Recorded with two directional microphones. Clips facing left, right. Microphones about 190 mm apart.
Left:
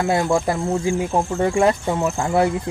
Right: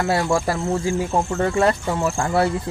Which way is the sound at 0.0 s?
20° left (ahead or behind).